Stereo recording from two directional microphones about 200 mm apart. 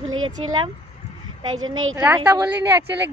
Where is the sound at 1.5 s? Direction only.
90° right.